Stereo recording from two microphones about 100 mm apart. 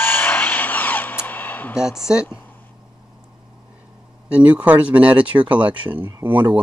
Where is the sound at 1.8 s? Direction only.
5° right (ahead or behind).